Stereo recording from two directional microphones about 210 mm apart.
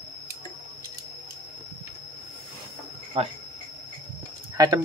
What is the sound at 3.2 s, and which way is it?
Speech, 25° right (ahead or behind).